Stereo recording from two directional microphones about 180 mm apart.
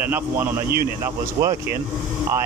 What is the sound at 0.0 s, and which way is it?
Speech, 10° right (ahead or behind).